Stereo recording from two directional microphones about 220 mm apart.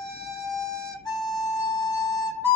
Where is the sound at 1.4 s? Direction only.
20° left (ahead or behind).